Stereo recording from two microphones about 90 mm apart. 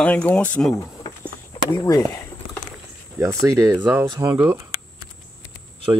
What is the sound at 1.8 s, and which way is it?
Speech, 40° left (ahead or behind).